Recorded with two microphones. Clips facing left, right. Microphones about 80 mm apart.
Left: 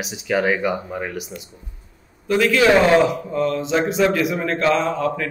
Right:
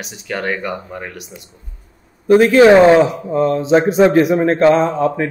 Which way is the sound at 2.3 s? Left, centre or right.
Right.